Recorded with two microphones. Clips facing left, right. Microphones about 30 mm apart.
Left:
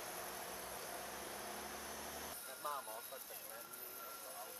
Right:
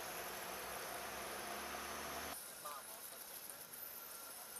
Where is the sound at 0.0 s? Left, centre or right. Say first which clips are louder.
Right 1 dB; centre.